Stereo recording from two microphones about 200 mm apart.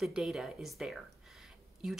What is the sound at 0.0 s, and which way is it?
A woman's voice, centre (ahead or behind).